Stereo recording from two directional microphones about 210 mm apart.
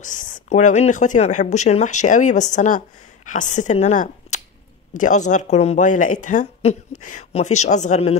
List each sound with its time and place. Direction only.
0.0 s speech: 40° left (ahead or behind)